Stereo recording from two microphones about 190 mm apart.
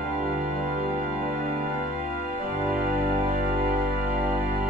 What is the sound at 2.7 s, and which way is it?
Music, 50° right (ahead or behind).